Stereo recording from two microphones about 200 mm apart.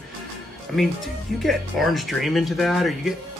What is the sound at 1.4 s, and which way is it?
Speech, centre (ahead or behind).